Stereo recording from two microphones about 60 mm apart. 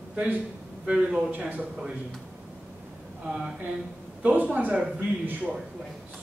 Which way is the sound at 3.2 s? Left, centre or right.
Centre.